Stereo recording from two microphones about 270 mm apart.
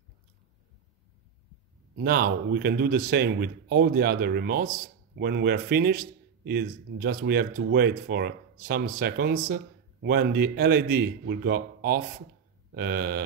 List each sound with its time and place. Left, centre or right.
2.0 s speech: right